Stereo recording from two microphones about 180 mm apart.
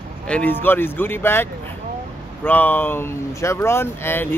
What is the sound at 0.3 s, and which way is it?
Speech, 10° left (ahead or behind).